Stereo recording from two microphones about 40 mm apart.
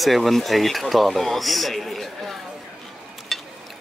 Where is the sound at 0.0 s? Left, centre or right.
Centre.